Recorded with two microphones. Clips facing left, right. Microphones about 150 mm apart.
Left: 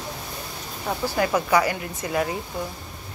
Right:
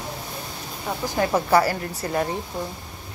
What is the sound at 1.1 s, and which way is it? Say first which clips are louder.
A woman's voice: right 2 dB; 30° right (ahead or behind).